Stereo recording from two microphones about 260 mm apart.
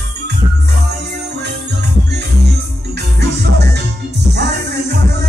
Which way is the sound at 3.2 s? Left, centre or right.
Right.